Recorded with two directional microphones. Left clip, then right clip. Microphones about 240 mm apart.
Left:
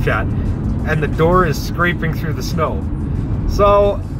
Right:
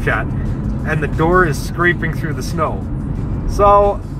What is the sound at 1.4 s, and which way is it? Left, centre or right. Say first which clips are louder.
Speech: right 2 dB; centre.